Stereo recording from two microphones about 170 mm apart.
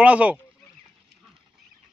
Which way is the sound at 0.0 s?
10° right (ahead or behind).